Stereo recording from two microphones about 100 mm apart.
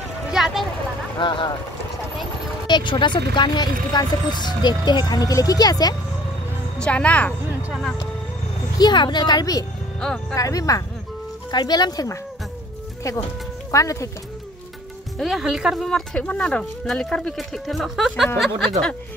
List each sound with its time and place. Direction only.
0.3 s a sound: 5° right (ahead or behind)
1.1 s speech: 50° left (ahead or behind)
2.6 s speech: 50° left (ahead or behind)
6.8 s a woman's voice: 10° left (ahead or behind)
8.7 s speech: 45° left (ahead or behind)
9.9 s speech: 10° left (ahead or behind)
10.3 s speech: 35° left (ahead or behind)
13.7 s speech: 30° left (ahead or behind)
15.1 s speech: centre (ahead or behind)